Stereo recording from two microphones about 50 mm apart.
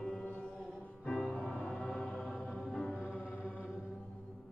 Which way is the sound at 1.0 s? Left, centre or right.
Centre.